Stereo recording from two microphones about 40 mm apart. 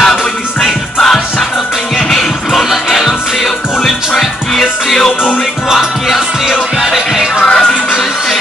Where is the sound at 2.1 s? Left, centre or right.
Centre.